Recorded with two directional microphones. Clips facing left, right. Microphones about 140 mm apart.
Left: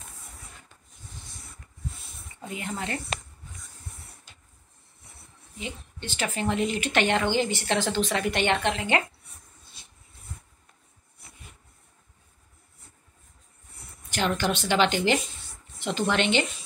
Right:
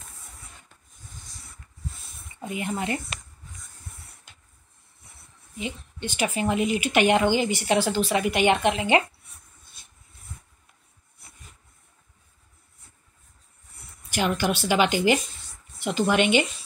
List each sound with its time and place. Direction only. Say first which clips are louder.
2.4 s a woman's voice: right 4 dB; 15° right (ahead or behind)
5.6 s a woman's voice: right 5 dB; 15° right (ahead or behind)
14.1 s a woman's voice: right 2 dB; 10° right (ahead or behind)